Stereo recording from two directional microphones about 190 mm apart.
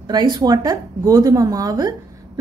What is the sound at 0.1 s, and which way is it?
A woman's voice, 20° right (ahead or behind).